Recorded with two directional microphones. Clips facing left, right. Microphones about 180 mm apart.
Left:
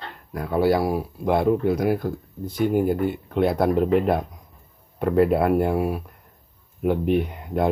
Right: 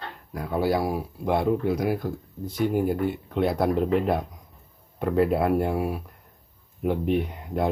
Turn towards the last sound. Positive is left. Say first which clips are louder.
# left 3 dB
turn(degrees=60)  # may be behind; listen again after turning